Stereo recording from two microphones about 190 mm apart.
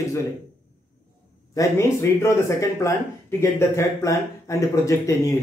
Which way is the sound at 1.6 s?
15° left (ahead or behind).